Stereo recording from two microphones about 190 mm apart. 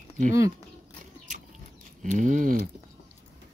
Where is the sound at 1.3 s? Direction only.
45° right (ahead or behind).